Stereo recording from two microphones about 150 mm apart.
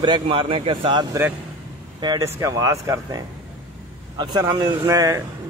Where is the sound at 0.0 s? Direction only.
35° right (ahead or behind).